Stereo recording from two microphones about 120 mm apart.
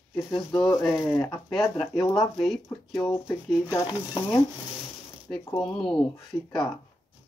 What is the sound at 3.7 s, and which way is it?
Speech, 30° left (ahead or behind).